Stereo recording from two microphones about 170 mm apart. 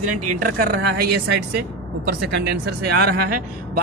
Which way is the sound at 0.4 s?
65° right (ahead or behind).